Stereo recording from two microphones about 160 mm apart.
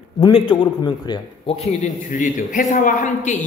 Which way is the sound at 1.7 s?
55° left (ahead or behind).